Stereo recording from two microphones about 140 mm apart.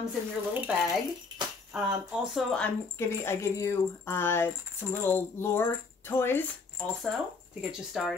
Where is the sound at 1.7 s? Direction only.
5° right (ahead or behind).